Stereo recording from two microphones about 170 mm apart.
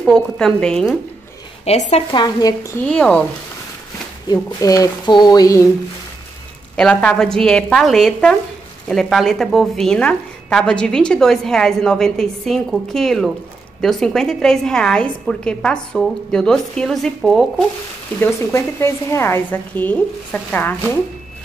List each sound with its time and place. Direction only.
0.0 s a woman's voice: centre (ahead or behind)
1.7 s speech: 40° left (ahead or behind)
2.1 s speech: 20° left (ahead or behind)
2.8 s a woman's voice: 5° left (ahead or behind)
4.3 s speech: 20° left (ahead or behind)
6.8 s a woman's voice: 5° left (ahead or behind)
18.2 s a woman's voice: 15° left (ahead or behind)